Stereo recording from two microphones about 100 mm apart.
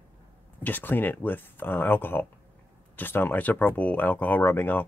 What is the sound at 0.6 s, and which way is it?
Speech, 20° left (ahead or behind).